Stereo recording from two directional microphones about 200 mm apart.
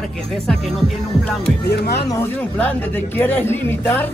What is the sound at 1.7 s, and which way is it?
Speech, 55° left (ahead or behind).